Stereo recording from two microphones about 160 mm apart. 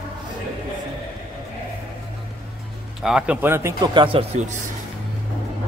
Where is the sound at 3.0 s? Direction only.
5° right (ahead or behind).